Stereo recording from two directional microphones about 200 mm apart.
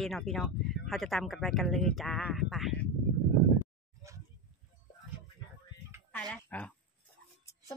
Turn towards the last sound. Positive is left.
turn(degrees=5)  # may be behind; listen again after turning